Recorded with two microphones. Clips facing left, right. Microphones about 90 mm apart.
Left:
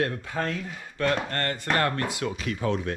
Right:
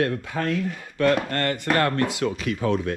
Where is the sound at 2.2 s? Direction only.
55° right (ahead or behind).